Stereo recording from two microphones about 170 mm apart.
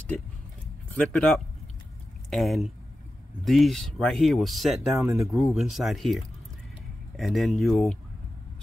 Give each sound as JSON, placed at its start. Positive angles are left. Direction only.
{"t": 0.9, "sound": "speech", "side_deg": 5}
{"t": 5.0, "sound": "speech", "side_deg": -15}
{"t": 5.3, "sound": "speech", "side_deg": 0}